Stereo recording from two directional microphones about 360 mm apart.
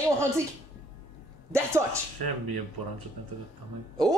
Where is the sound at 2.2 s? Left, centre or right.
Right.